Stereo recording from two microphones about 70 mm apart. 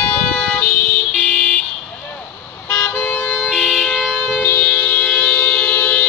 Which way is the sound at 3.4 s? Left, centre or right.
Centre.